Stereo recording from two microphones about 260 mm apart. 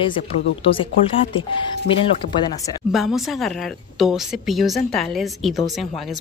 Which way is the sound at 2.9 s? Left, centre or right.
Centre.